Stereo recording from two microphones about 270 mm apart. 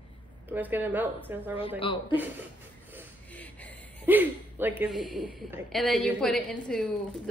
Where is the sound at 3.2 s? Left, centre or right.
Centre.